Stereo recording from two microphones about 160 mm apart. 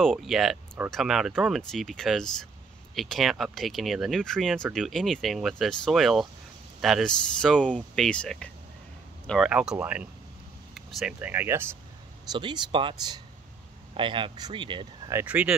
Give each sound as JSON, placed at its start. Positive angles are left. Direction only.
{"t": 0.0, "sound": "speech", "side_deg": 0}
{"t": 9.3, "sound": "speech", "side_deg": -5}
{"t": 10.7, "sound": "a sound", "side_deg": 0}
{"t": 11.1, "sound": "speech", "side_deg": -10}
{"t": 12.3, "sound": "speech", "side_deg": -30}
{"t": 15.0, "sound": "speech", "side_deg": -15}